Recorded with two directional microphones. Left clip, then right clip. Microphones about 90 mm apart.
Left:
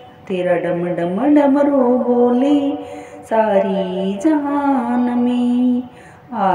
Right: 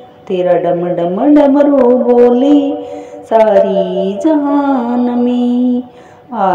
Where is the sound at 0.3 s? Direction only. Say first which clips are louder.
Right 6 dB; 35° right (ahead or behind).